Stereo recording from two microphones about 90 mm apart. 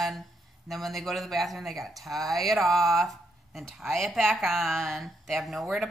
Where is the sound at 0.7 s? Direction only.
Centre (ahead or behind).